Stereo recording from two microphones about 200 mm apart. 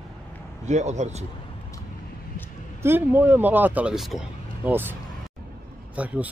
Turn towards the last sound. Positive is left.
turn(degrees=-5)  # may be behind; listen again after turning